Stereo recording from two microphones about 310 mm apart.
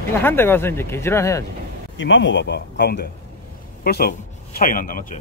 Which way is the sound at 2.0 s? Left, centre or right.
Left.